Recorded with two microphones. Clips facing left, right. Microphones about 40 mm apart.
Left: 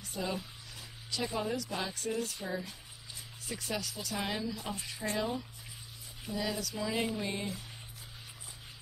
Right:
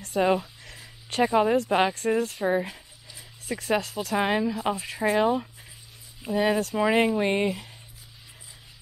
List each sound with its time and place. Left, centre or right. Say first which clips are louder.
0.0 s speech: right 14 dB; right
2.4 s speech: right 13 dB; right
3.4 s a woman's voice: right 11 dB; right